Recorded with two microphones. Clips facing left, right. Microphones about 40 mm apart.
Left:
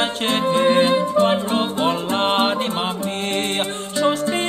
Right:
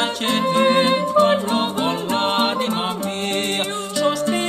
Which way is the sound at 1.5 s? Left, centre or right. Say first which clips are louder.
Left 1 dB; left.